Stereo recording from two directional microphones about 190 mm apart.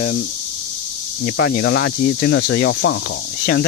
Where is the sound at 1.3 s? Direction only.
70° left (ahead or behind).